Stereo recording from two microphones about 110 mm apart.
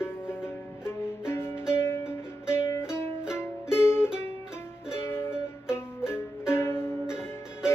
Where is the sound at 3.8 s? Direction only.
20° left (ahead or behind).